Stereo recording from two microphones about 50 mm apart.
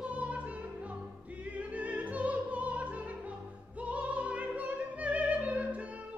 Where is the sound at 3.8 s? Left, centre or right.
Right.